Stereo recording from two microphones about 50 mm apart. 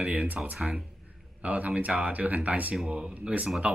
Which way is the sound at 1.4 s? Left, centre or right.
Right.